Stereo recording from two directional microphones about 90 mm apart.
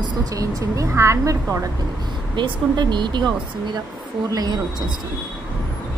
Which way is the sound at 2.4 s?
55° right (ahead or behind).